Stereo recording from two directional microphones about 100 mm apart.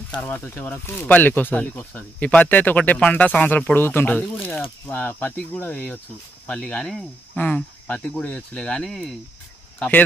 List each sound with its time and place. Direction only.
0.2 s speech: 15° left (ahead or behind)
7.3 s speech: 15° left (ahead or behind)
9.8 s speech: 15° left (ahead or behind)